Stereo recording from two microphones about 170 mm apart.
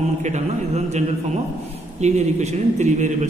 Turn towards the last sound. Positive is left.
turn(degrees=-45)  # may be behind; listen again after turning